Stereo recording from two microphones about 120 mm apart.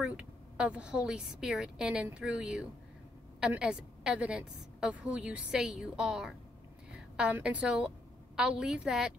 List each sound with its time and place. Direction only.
0.0 s a woman's voice: 10° right (ahead or behind)